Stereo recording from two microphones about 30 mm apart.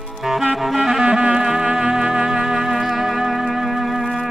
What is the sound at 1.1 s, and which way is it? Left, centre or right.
Music, right.